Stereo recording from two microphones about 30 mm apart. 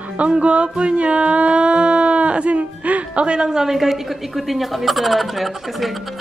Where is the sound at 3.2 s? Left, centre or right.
Right.